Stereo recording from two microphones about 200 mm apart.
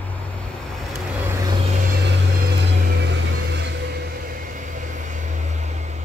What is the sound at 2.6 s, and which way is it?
Vehicle, 55° right (ahead or behind).